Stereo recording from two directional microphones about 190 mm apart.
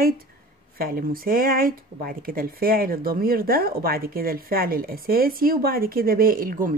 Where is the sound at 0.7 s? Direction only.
50° right (ahead or behind).